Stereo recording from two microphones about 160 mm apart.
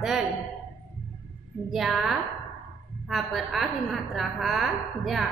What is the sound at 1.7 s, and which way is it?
A woman's voice, centre (ahead or behind).